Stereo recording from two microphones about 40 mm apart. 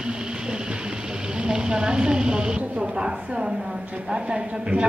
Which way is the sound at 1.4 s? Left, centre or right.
Centre.